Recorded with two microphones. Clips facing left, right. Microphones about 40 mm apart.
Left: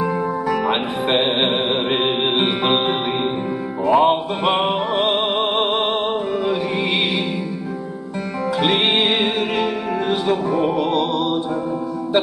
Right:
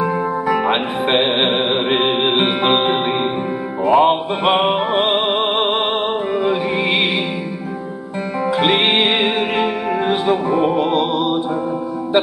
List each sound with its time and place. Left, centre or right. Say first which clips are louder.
0.0 s music: right 2 dB; centre
8.5 s music: right 2 dB; centre